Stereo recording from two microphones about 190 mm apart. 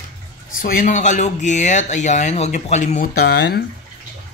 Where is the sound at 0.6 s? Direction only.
50° left (ahead or behind).